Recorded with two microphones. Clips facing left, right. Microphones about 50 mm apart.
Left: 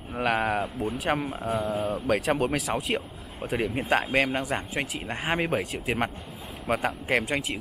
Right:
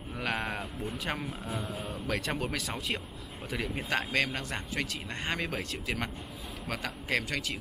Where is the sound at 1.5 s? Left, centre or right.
Centre.